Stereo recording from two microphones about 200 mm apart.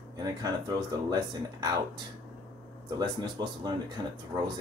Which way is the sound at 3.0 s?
20° right (ahead or behind).